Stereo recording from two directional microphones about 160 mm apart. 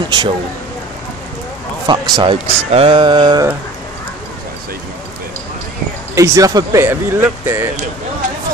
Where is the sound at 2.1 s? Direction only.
35° right (ahead or behind).